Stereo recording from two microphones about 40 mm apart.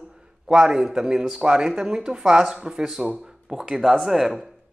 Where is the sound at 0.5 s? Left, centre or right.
Centre.